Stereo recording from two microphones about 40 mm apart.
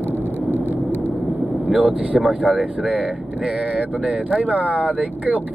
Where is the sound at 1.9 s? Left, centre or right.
Right.